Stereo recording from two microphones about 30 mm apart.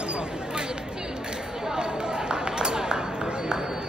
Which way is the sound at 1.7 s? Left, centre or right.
Right.